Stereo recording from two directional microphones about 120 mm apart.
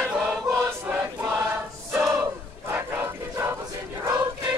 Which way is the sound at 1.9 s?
5° right (ahead or behind).